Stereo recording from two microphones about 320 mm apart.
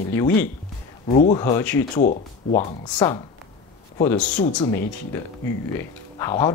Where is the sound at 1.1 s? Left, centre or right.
Left.